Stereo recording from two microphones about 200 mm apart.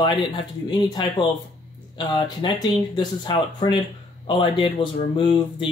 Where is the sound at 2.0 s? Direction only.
20° left (ahead or behind).